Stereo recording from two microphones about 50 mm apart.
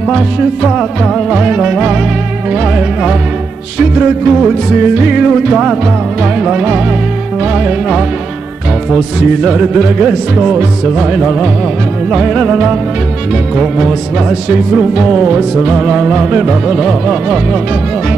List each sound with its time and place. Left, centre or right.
0.4 s music: centre
5.2 s music: centre
8.9 s music: right
14.5 s music: right
15.8 s music: centre
16.1 s music: right